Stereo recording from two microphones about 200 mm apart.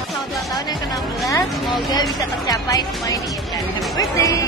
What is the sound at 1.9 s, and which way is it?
Speech, 20° left (ahead or behind).